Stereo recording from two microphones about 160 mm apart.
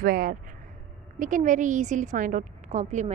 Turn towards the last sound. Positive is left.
turn(degrees=-45)  # may be behind; listen again after turning